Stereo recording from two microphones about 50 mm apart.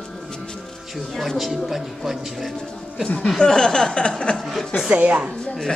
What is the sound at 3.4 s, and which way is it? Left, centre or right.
Chuckle, centre.